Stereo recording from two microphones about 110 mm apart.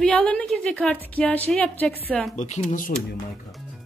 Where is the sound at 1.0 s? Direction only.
15° left (ahead or behind).